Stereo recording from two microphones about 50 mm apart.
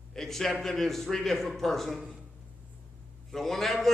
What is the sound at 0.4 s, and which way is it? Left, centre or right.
Speech, centre.